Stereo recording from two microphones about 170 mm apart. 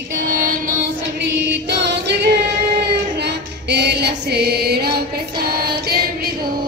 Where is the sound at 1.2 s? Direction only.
85° right; by 6.3 s 65° right (ahead or behind).